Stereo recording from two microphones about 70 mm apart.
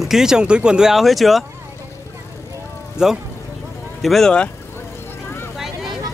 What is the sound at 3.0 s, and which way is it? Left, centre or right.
Speech, centre.